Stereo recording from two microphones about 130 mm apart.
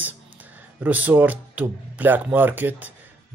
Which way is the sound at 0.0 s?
10° right (ahead or behind).